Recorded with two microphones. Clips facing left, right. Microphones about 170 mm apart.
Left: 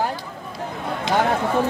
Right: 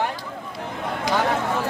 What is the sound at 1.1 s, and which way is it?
Speech, 25° left (ahead or behind).